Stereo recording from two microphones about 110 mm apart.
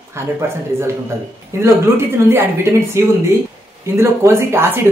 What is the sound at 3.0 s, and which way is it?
Speech, 25° right (ahead or behind).